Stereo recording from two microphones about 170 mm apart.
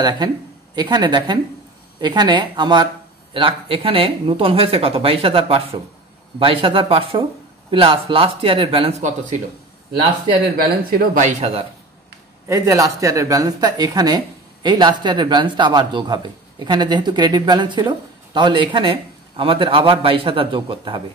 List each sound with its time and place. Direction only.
0.7 s speech: 25° right (ahead or behind)
10.5 s speech: 60° right (ahead or behind)
11.2 s speech: 40° right (ahead or behind)
12.4 s speech: 15° right (ahead or behind)